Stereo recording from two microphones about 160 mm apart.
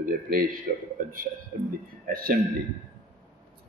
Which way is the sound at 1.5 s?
60° right (ahead or behind).